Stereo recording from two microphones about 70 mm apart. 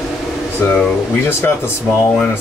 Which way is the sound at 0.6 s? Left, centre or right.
Left.